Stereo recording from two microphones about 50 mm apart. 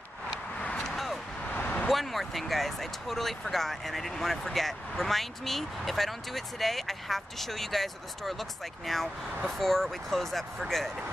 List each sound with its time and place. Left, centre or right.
0.6 s vehicle: left
0.9 s vehicle: centre
1.5 s vehicle: left
1.9 s speech: centre